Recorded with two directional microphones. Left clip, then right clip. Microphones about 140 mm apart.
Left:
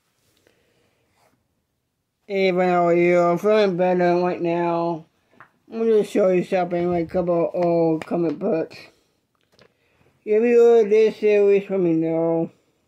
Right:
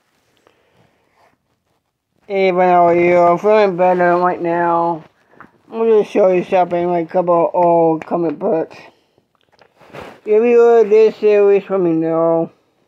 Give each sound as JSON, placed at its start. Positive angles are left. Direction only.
{"t": 2.2, "sound": "speech", "side_deg": 20}
{"t": 5.8, "sound": "speech", "side_deg": 40}
{"t": 7.7, "sound": "speech", "side_deg": -35}
{"t": 8.0, "sound": "speech", "side_deg": 30}
{"t": 10.2, "sound": "speech", "side_deg": 20}